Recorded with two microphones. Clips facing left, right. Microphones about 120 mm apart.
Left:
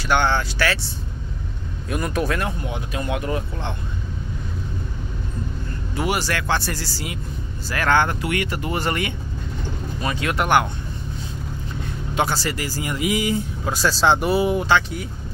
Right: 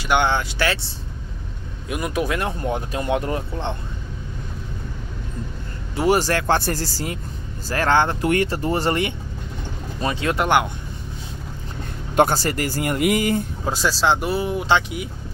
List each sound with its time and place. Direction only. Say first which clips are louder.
0.0 s speech: even; 15° right (ahead or behind)
1.9 s speech: even; 10° right (ahead or behind)
2.6 s speech: right 4 dB; 45° right (ahead or behind)
3.0 s speech: even; 25° right (ahead or behind)
5.9 s speech: right 5 dB; 40° right (ahead or behind)
7.7 s speech: right 1 dB; 30° right (ahead or behind)
8.2 s speech: right 5 dB; 40° right (ahead or behind); by 10.7 s 20° right (ahead or behind)
12.2 s speech: right 5 dB; 50° right (ahead or behind)
13.8 s speech: left 2 dB; 5° right (ahead or behind)
14.7 s speech: even; 15° right (ahead or behind)